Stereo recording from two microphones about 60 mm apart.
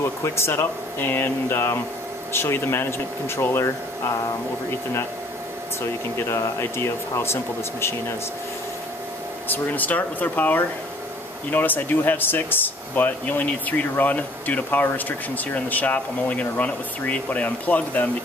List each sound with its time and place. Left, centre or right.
0.0 s speech: left
6.1 s speech: left
9.5 s speech: left